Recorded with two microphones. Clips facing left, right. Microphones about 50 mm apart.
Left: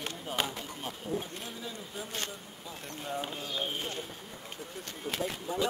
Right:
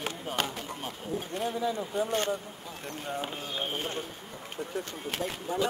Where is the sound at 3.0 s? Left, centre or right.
Centre.